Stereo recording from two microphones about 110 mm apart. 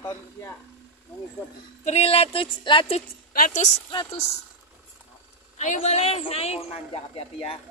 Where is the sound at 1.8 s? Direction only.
75° left (ahead or behind); by 2.9 s 50° left (ahead or behind).